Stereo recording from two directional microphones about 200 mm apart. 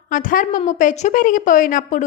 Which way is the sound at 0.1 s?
40° left (ahead or behind).